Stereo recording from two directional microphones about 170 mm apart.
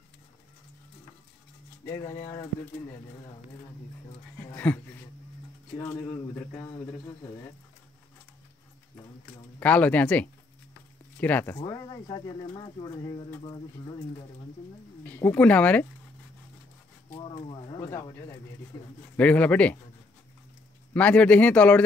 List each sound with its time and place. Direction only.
1.9 s speech: 20° left (ahead or behind)
4.6 s speech: 10° left (ahead or behind)
9.6 s speech: 10° left (ahead or behind); by 13.9 s 25° left (ahead or behind)
15.0 s speech: 10° left (ahead or behind)
17.1 s speech: 30° left (ahead or behind)
19.1 s speech: 10° left (ahead or behind)
20.9 s speech: 10° left (ahead or behind)